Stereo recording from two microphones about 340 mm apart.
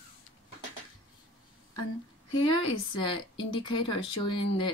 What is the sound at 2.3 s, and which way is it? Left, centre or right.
Speech, centre.